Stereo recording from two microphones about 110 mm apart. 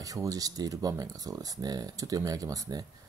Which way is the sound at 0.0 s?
30° right (ahead or behind).